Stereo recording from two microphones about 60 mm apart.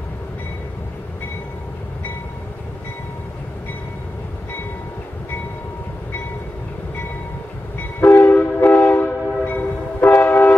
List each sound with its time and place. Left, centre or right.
8.0 s train: left